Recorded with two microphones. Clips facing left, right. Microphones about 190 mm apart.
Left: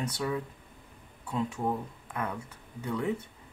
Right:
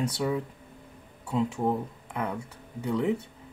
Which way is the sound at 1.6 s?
15° right (ahead or behind).